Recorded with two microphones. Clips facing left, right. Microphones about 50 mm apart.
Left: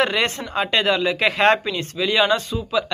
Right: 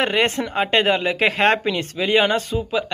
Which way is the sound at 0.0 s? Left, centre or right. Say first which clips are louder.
Right 1 dB; right.